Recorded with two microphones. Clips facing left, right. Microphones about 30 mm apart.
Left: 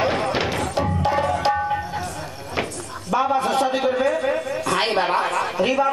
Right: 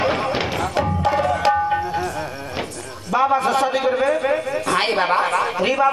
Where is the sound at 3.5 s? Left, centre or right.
Right.